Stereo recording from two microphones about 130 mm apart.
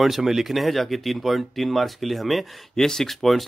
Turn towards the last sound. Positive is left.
turn(degrees=0)  # may be behind; listen again after turning